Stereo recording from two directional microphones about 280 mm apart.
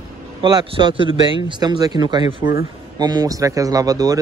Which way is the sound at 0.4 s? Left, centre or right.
Centre.